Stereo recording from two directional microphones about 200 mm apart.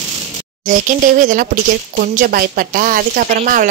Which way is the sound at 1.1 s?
45° right (ahead or behind).